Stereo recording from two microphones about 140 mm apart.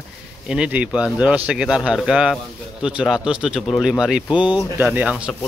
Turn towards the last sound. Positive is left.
turn(degrees=-10)  # may be behind; listen again after turning